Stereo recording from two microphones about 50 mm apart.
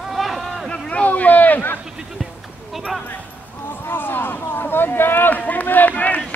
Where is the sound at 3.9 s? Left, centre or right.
Left.